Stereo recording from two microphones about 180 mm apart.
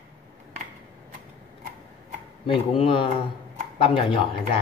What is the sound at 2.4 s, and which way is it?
Speech, 30° left (ahead or behind).